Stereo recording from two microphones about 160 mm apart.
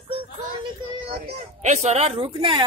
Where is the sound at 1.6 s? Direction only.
45° right (ahead or behind).